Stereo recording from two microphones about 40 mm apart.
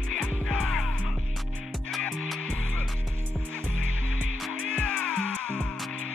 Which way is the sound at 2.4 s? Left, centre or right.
Left.